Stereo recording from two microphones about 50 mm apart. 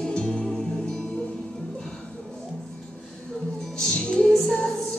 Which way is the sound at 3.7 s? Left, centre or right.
Centre.